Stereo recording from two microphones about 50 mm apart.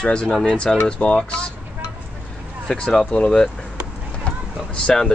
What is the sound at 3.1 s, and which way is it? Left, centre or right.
Speech, left.